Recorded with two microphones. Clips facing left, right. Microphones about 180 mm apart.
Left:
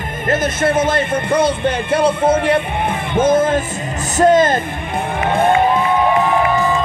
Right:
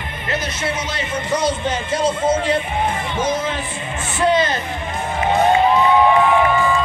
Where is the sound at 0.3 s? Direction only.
50° left (ahead or behind).